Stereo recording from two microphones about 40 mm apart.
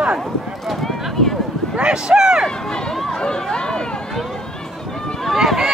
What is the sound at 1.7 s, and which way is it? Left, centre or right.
Speech, right.